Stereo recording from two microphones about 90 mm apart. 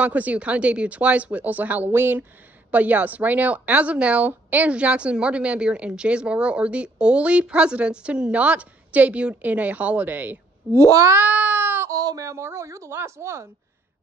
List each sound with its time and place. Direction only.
0.0 s speech: 15° right (ahead or behind)
10.8 s a woman's voice: 40° right (ahead or behind)
11.1 s a sound: 20° right (ahead or behind)
11.9 s a woman's voice: 40° right (ahead or behind)